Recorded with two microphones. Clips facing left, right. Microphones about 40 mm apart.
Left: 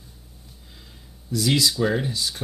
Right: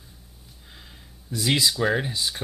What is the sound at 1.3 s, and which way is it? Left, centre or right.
Speech, centre.